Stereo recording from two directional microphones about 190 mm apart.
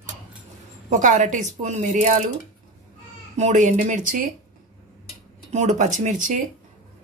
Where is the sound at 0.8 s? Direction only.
40° right (ahead or behind).